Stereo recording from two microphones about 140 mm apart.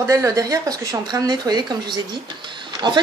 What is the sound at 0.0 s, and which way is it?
Speech, 20° right (ahead or behind).